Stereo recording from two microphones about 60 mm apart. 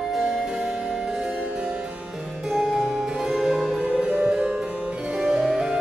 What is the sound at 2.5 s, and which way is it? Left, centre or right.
Harpsichord, centre.